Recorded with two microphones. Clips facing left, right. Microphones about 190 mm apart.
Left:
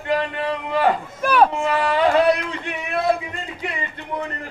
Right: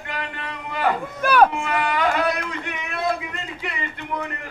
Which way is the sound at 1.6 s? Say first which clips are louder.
Left 4 dB; 30° left (ahead or behind).